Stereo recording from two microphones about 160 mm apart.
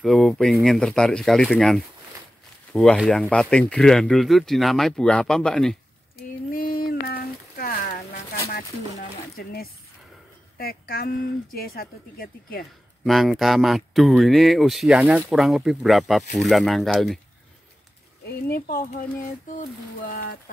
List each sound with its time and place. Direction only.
0.0 s speech: centre (ahead or behind)
6.5 s a sound: 65° left (ahead or behind)
9.4 s speech: 70° left (ahead or behind)
13.0 s speech: centre (ahead or behind)
18.2 s speech: 65° left (ahead or behind)